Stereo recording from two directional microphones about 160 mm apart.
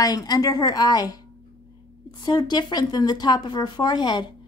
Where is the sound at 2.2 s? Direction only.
25° left (ahead or behind).